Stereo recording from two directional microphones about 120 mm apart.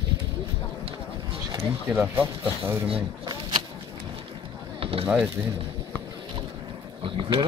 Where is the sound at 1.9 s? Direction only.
15° right (ahead or behind).